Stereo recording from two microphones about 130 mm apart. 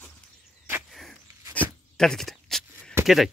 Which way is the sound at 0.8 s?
Centre (ahead or behind).